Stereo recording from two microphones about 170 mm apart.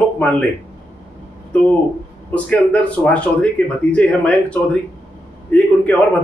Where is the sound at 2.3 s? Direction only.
10° left (ahead or behind).